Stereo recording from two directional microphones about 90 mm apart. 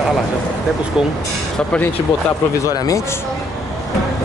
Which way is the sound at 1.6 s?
10° left (ahead or behind).